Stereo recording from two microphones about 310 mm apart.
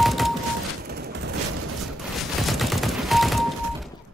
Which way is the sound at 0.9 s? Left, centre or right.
Right.